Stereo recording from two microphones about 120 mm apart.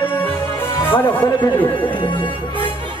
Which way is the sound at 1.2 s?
40° left (ahead or behind).